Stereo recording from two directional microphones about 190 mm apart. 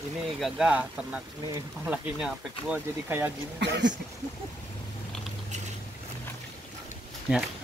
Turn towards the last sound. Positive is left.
turn(degrees=-10)  # may be behind; listen again after turning